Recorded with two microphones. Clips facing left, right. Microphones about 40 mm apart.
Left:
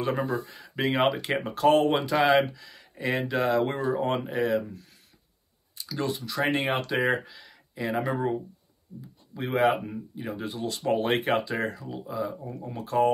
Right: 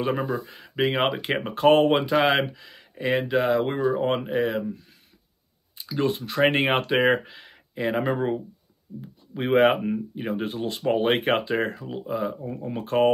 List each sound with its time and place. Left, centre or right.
0.0 s speech: right
5.8 s a sound: right
6.0 s speech: right